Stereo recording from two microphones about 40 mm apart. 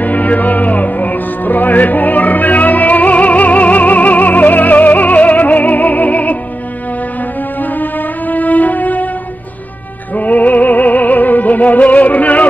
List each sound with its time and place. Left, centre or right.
0.0 s music: left
7.6 s music: left
10.1 s music: left